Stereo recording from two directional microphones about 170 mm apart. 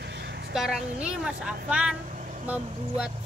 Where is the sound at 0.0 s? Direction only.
75° right (ahead or behind).